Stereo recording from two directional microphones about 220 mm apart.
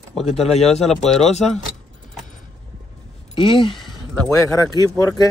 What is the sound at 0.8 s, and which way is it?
Speech, centre (ahead or behind).